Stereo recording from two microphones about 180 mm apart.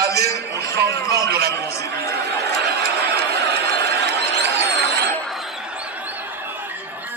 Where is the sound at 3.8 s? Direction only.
70° right (ahead or behind).